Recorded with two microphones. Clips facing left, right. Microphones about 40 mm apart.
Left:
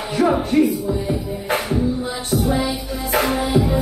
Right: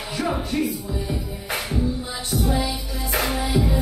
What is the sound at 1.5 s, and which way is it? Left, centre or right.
Music, centre.